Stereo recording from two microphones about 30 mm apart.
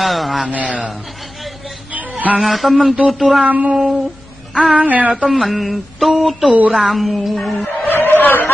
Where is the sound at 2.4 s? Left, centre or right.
Centre.